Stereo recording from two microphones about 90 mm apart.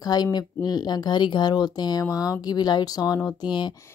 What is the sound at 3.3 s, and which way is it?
Speech, 55° left (ahead or behind).